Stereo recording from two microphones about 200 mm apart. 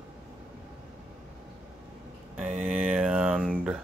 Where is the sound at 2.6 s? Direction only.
5° right (ahead or behind).